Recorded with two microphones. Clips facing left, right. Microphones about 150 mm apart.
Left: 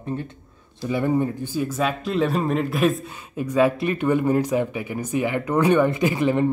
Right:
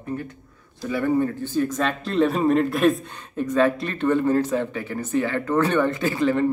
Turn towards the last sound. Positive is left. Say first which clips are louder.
# left 1 dB
turn(degrees=15)  # may be behind; listen again after turning